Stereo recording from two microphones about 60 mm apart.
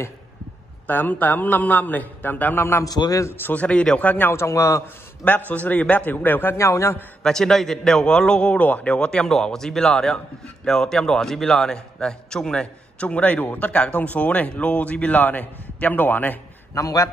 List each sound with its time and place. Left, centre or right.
0.8 s a man's voice: left
2.8 s a man's voice: left
3.3 s a man's voice: left
3.5 s a man's voice: left
4.3 s a man's voice: left
5.2 s a man's voice: left
6.5 s a man's voice: left
7.2 s a man's voice: centre; by 16.3 s left
16.7 s a man's voice: left